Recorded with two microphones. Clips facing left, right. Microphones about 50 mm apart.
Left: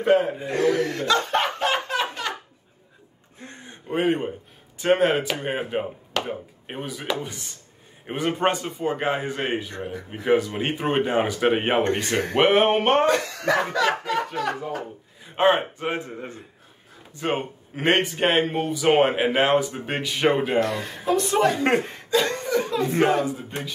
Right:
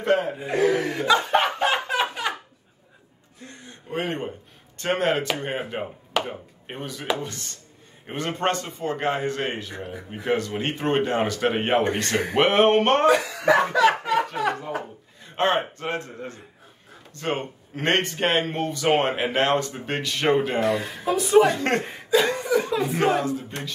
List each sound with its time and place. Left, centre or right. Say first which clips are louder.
0.0 s speech: left 3 dB; centre
0.5 s chuckle: right 2 dB; centre
3.4 s a sound: left 2 dB; left
3.9 s speech: left 5 dB; centre
13.0 s speech: right 2 dB; centre
15.2 s speech: left 3 dB; centre
21.5 s speech: left 3 dB; centre
21.8 s chuckle: right 2 dB; centre
22.9 s speech: left 2 dB; centre